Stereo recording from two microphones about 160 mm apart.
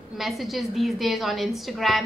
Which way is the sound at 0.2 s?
Centre (ahead or behind).